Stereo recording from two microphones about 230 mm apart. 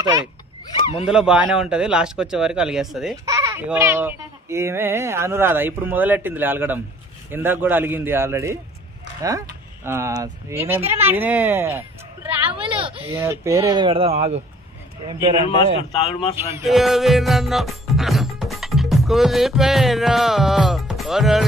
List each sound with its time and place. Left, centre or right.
0.7 s a sound: left
1.0 s a man's voice: centre
3.3 s speech: centre
9.8 s speech: centre
12.8 s speech: right
13.2 s speech: centre
15.9 s speech: left
16.6 s music: centre